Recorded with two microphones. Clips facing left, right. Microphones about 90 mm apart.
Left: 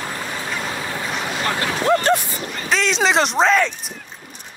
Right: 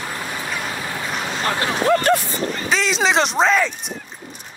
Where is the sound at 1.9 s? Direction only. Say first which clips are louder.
Even; 25° left (ahead or behind).